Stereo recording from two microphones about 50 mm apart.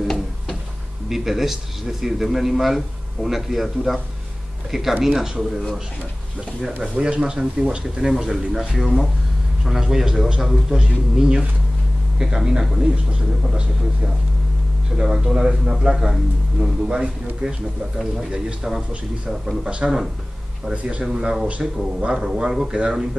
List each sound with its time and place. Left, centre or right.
1.0 s a man's voice: centre
6.8 s a man's voice: centre
10.8 s speech: centre
18.8 s speech: right
21.0 s speech: centre
21.5 s speech: right
22.1 s speech: centre